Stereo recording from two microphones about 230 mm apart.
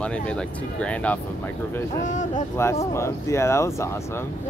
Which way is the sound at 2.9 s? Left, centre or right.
Centre.